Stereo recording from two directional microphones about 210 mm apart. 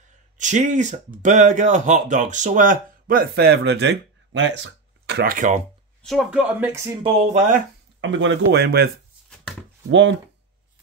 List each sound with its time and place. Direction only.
0.4 s speech: 35° right (ahead or behind)
6.0 s speech: 5° right (ahead or behind)
7.0 s speech: 30° right (ahead or behind)
8.0 s speech: 60° right (ahead or behind)
9.8 s speech: 60° right (ahead or behind)